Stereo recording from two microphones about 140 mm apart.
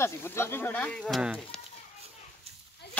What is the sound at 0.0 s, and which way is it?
Speech, 20° left (ahead or behind).